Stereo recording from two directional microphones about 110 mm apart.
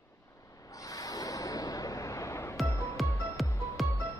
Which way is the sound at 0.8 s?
30° left (ahead or behind).